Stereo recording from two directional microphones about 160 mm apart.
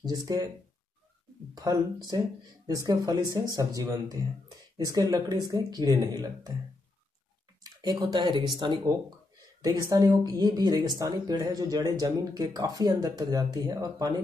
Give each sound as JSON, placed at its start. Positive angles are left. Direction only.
{"t": 0.0, "sound": "speech", "side_deg": -25}
{"t": 1.5, "sound": "speech", "side_deg": -25}
{"t": 7.6, "sound": "speech", "side_deg": -25}